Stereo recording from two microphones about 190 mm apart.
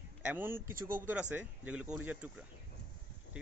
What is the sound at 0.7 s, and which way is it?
Speech, 45° right (ahead or behind).